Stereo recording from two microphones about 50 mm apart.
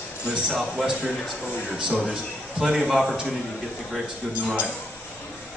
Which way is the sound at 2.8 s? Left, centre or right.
Centre.